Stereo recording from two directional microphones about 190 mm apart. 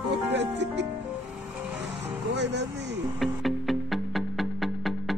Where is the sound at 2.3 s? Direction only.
65° right (ahead or behind).